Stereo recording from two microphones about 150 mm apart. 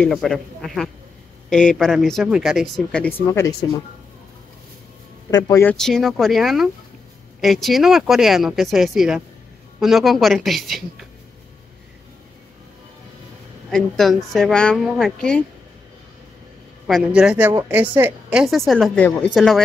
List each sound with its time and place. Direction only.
0.0 s speech: 5° left (ahead or behind)
5.3 s speech: 20° left (ahead or behind)
5.7 s speech: 5° left (ahead or behind)
13.7 s speech: 5° left (ahead or behind)
16.8 s a woman's voice: 5° right (ahead or behind)
18.9 s speech: 10° left (ahead or behind)